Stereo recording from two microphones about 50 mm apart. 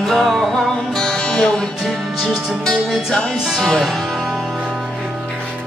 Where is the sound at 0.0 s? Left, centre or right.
Centre.